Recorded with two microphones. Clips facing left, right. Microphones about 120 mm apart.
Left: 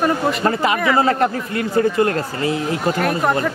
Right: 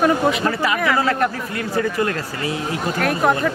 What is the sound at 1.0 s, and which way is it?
Speech, 30° left (ahead or behind).